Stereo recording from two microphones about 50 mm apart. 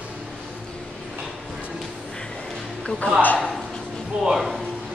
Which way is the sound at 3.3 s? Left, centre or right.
Centre.